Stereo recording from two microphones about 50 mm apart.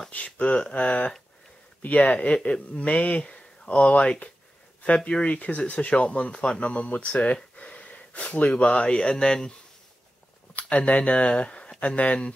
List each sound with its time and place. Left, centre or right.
0.1 s speech: left
10.7 s speech: left